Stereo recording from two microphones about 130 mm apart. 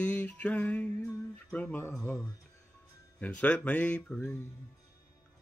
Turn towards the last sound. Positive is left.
turn(degrees=10)  # may be behind; listen again after turning